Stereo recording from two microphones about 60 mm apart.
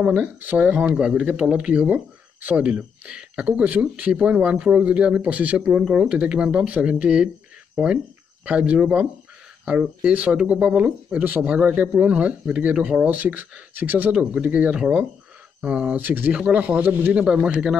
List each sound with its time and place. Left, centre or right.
0.0 s speech: right
0.9 s speech: centre; by 14.1 s right
14.1 s speech: centre